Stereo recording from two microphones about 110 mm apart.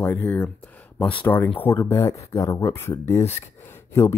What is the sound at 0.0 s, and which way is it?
Speech, 20° left (ahead or behind).